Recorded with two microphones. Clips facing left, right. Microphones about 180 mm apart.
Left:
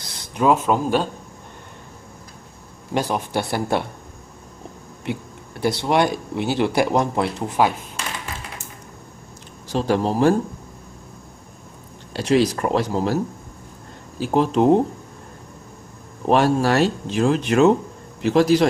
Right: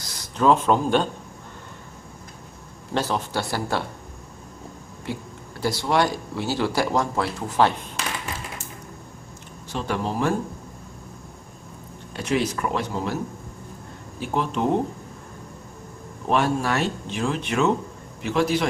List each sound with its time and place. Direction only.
0.0 s a sound: 20° left (ahead or behind)
0.5 s speech: 5° left (ahead or behind)
2.9 s speech: 15° left (ahead or behind)
5.0 s speech: 20° left (ahead or behind)
9.7 s speech: 35° left (ahead or behind)
12.2 s speech: 35° left (ahead or behind)
14.3 s speech: 35° left (ahead or behind)
16.3 s speech: 35° left (ahead or behind)